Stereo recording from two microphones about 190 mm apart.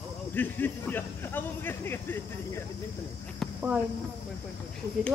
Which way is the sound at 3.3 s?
5° right (ahead or behind).